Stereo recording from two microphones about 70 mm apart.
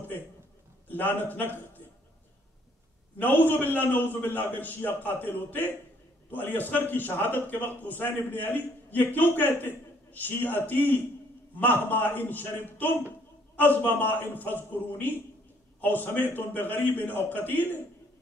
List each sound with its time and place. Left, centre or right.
0.8 s a man's voice: left
3.3 s a man's voice: left